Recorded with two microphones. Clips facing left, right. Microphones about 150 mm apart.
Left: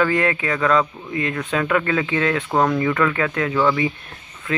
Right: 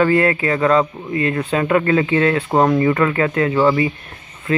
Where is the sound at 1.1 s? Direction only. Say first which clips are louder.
Right 5 dB; 50° right (ahead or behind).